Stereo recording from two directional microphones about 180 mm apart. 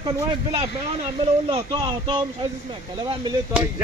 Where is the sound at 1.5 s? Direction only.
25° right (ahead or behind).